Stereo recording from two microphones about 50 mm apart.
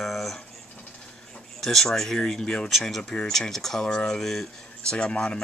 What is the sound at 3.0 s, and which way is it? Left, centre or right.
Speech, centre.